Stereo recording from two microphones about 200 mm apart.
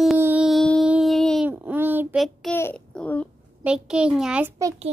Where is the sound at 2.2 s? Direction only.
5° left (ahead or behind).